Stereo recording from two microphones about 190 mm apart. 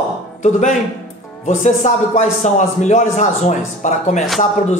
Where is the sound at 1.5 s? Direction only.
40° left (ahead or behind).